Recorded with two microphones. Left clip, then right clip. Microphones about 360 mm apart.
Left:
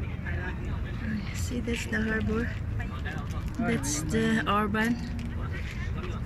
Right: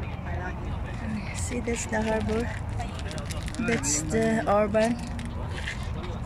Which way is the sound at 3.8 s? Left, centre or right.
Centre.